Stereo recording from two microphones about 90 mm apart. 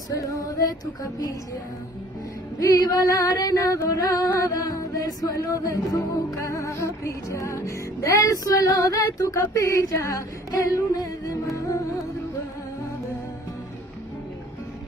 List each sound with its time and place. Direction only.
0.1 s female singing: 40° left (ahead or behind)
2.6 s a sound: 45° left (ahead or behind)
4.4 s music: 45° left (ahead or behind)